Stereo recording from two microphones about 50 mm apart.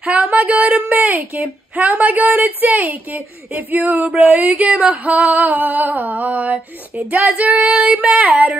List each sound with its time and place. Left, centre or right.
0.0 s a woman's voice: right
4.2 s a woman's voice: right
7.5 s female singing: right
8.2 s a woman's voice: right